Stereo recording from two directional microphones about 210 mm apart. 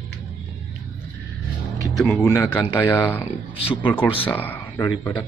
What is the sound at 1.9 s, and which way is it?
Speech, centre (ahead or behind).